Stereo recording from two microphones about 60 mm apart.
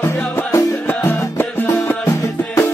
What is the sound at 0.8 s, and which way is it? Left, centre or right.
Music, left.